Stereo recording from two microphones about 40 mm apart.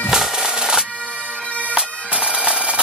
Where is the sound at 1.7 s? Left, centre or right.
Right.